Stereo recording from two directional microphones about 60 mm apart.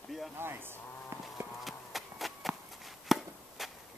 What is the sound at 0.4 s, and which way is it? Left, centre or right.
Speech, right.